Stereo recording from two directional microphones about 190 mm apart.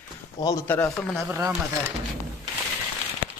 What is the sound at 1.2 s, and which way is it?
Speech, 15° right (ahead or behind).